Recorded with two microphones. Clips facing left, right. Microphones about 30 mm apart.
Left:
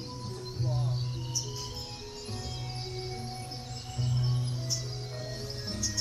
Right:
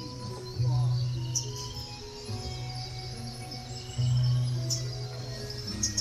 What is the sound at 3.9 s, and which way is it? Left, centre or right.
Music, centre.